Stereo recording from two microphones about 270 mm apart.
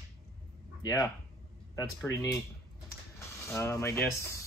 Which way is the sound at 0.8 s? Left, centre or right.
Centre.